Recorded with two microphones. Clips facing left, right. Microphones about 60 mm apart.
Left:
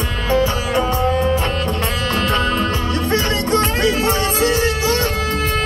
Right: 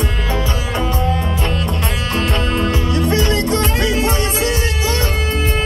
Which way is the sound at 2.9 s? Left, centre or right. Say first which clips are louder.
Right 3 dB; left.